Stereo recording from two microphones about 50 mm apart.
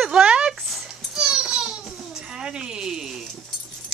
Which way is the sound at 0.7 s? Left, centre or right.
Centre.